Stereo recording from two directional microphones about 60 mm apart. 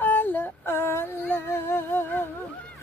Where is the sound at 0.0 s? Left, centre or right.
Left.